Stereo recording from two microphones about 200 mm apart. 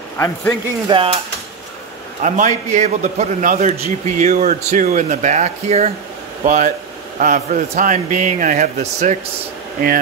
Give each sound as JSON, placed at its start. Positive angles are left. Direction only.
{"t": 0.8, "sound": "speech", "side_deg": -25}
{"t": 2.2, "sound": "a man's voice", "side_deg": -40}